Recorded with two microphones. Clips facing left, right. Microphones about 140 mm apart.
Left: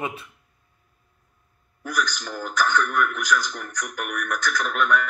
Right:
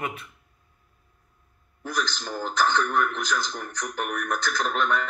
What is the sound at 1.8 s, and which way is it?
Speech, 30° right (ahead or behind).